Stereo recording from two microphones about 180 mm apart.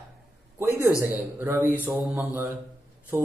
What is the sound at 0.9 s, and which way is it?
Speech, 15° left (ahead or behind).